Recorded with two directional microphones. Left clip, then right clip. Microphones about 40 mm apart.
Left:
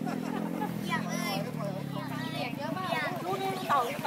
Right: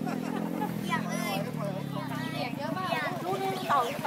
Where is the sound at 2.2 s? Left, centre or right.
Centre.